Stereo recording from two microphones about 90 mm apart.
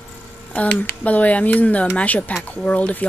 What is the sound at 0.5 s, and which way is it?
Speech, 20° left (ahead or behind).